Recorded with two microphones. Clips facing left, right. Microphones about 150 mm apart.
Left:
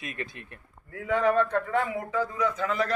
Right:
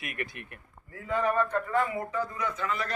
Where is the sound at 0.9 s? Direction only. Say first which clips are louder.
Left 4 dB; 75° left (ahead or behind).